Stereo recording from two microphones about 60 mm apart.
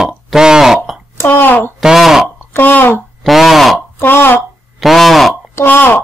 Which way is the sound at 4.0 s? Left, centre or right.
Left.